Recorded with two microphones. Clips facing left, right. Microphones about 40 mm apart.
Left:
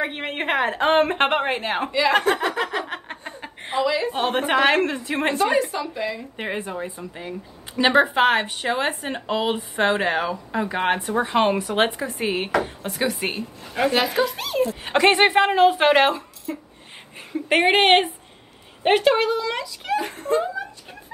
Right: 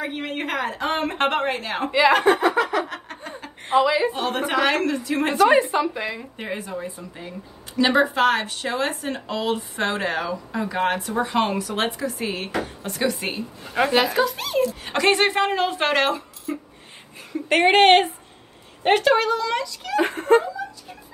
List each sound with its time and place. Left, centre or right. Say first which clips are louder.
0.0 s speech: left 2 dB; left
1.9 s a woman's voice: right 5 dB; centre
2.9 s laughter: left 1 dB; left
3.7 s a woman's voice: right 4 dB; centre
4.1 s speech: left 2 dB; left
5.5 s a woman's voice: right 4 dB; right
6.3 s a woman's voice: left 2 dB; left
13.7 s speech: right 1 dB; centre
14.9 s a woman's voice: left 5 dB; centre
16.5 s a sound: right 2 dB; centre
17.3 s a woman's voice: right 1 dB; centre
20.0 s speech: right 7 dB; right